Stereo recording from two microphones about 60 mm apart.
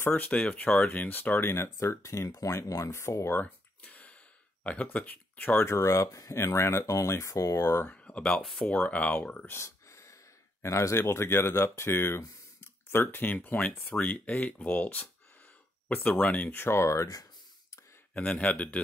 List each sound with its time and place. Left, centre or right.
0.1 s speech: left
1.5 s speech: left
2.2 s speech: left
3.8 s a sound: left
4.6 s speech: left
5.7 s speech: left
6.9 s speech: left
7.9 s speech: centre
9.7 s a sound: left
10.6 s speech: left
16.5 s speech: left
18.1 s speech: left